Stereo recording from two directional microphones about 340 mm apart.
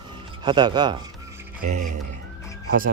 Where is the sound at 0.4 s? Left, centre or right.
Centre.